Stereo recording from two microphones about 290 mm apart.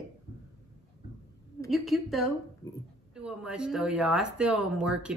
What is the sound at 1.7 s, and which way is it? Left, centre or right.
Speech, centre.